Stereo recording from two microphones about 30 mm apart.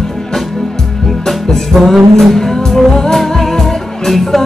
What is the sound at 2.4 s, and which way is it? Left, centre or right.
Music, centre.